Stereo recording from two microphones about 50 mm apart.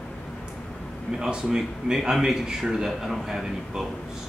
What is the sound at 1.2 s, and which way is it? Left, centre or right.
A man's voice, centre.